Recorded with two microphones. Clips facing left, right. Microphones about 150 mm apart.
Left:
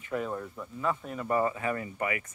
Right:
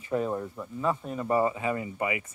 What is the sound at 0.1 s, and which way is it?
Speech, 25° right (ahead or behind).